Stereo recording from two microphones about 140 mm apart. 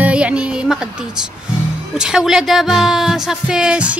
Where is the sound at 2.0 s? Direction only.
5° right (ahead or behind).